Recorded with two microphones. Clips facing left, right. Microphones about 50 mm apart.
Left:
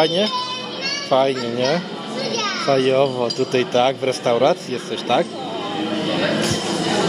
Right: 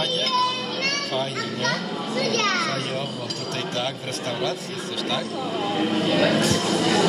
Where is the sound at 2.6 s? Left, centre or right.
Left.